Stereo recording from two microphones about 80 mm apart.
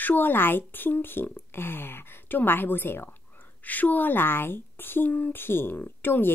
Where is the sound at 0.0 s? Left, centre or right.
Left.